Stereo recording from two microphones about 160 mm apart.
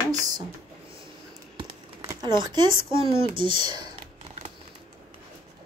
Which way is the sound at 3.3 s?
30° right (ahead or behind).